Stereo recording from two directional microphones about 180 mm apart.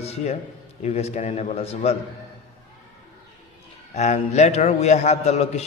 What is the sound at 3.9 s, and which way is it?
Speech, 40° left (ahead or behind).